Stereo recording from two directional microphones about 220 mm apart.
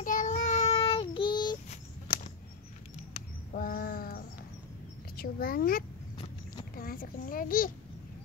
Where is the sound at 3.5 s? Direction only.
40° left (ahead or behind).